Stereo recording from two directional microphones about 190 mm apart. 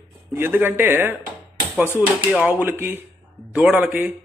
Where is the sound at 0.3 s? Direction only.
10° right (ahead or behind).